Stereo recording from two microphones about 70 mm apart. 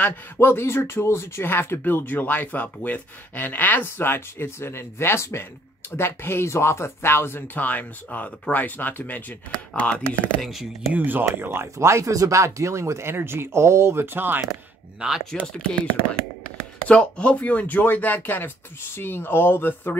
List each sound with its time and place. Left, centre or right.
0.4 s speech: left
7.5 s speech: left
10.4 s speech: centre
10.9 s speech: right
11.4 s speech: right
15.0 s speech: centre
15.3 s speech: centre
16.8 s speech: centre; by 20.0 s left